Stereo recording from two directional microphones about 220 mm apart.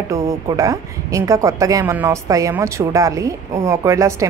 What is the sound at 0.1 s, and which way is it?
A woman's voice, 15° right (ahead or behind).